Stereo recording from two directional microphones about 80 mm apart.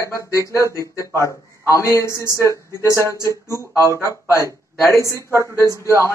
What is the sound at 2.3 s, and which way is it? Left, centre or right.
Speech, right.